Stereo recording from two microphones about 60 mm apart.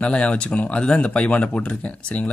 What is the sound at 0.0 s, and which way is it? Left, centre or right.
Speech, centre.